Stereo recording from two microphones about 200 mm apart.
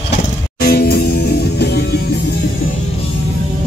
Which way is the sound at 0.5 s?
50° left (ahead or behind).